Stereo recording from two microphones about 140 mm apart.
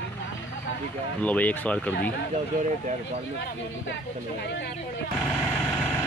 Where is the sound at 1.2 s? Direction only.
10° left (ahead or behind).